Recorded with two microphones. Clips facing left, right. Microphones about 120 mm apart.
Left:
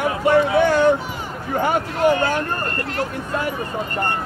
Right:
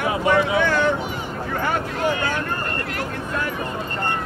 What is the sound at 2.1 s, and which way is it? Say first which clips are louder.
Speech: left 5 dB; 40° left (ahead or behind).